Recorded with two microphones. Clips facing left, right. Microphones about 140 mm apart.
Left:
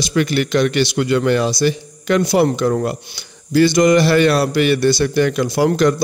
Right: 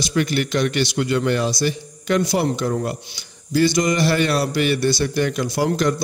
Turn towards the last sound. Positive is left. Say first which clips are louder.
# left 5 dB
turn(degrees=75)  # may be behind; listen again after turning